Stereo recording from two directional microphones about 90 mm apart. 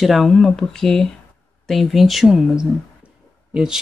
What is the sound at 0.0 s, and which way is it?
Speech, centre (ahead or behind).